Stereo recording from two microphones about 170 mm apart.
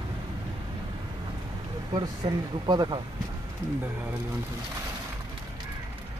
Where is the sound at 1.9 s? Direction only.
25° right (ahead or behind).